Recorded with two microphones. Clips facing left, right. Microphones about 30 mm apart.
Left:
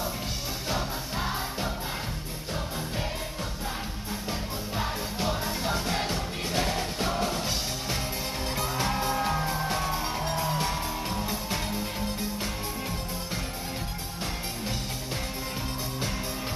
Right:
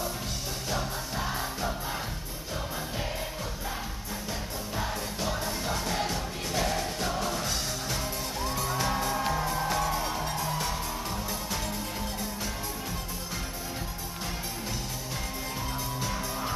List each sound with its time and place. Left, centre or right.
0.7 s music: left
4.3 s music: left